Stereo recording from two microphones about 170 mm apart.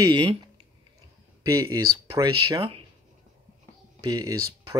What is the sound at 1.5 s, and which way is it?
Speech, 20° right (ahead or behind).